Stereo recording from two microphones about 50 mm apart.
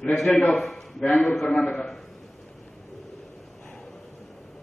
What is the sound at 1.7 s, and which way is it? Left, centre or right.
Speech, centre.